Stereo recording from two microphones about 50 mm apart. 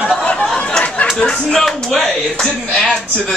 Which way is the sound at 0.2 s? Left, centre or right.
Left.